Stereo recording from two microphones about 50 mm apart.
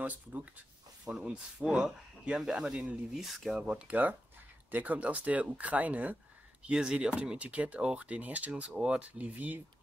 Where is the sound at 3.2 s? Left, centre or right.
Centre.